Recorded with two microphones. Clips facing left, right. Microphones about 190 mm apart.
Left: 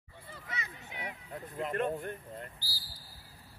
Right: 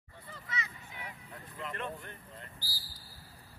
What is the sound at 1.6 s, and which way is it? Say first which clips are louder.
Male singing: left 8 dB; 45° left (ahead or behind).